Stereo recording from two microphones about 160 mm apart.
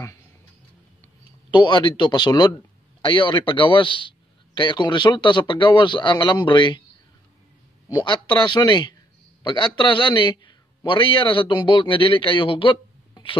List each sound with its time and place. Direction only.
1.5 s a man's voice: 30° left (ahead or behind)
7.9 s a man's voice: 30° left (ahead or behind)